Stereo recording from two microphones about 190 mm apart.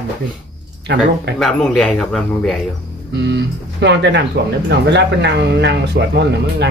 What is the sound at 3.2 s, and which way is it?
Speech, 65° right (ahead or behind).